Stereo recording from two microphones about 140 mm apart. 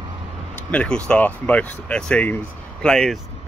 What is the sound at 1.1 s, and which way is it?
Speech, 10° left (ahead or behind).